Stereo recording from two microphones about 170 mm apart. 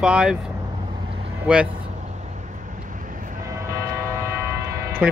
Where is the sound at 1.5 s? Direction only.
5° right (ahead or behind).